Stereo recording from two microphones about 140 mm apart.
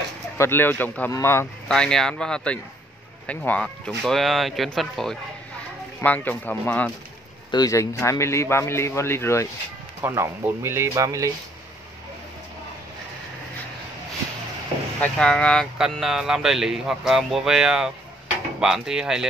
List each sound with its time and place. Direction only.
0.4 s speech: 15° left (ahead or behind)
1.7 s speech: 5° left (ahead or behind)
7.5 s a man's voice: 25° left (ahead or behind)
10.0 s speech: 20° right (ahead or behind)
15.0 s speech: 5° left (ahead or behind)